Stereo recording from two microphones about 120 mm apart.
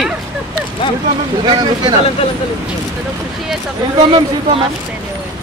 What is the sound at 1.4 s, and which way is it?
Speech, 35° right (ahead or behind).